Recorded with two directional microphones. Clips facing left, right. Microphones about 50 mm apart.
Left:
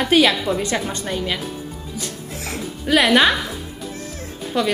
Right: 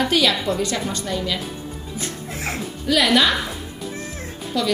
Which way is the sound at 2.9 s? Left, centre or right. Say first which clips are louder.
Left 3 dB; left.